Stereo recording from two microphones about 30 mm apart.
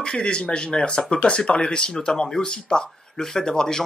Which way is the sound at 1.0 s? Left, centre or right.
Left.